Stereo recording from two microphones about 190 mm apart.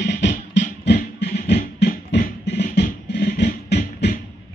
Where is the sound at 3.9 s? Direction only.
55° left (ahead or behind).